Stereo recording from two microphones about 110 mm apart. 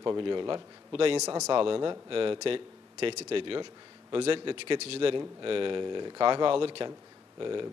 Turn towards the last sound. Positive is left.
turn(degrees=-45)  # may be behind; listen again after turning